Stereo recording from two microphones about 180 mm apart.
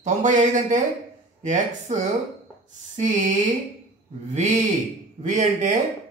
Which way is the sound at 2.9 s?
45° right (ahead or behind).